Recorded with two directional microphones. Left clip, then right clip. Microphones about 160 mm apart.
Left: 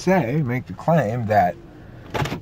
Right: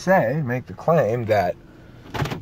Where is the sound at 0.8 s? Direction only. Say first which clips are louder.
Right 2 dB; 25° right (ahead or behind).